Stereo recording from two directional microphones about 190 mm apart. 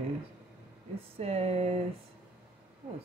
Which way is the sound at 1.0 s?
30° right (ahead or behind).